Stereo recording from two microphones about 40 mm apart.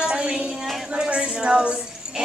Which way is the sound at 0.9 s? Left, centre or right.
Right.